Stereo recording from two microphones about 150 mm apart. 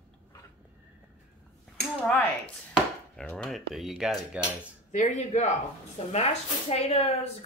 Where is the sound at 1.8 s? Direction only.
10° left (ahead or behind).